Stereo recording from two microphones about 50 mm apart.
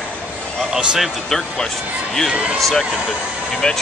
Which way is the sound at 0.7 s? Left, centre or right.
Centre.